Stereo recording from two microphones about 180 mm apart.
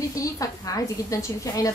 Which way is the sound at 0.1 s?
20° left (ahead or behind).